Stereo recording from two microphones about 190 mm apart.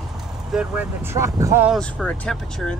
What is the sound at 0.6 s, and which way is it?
Speech, 10° right (ahead or behind).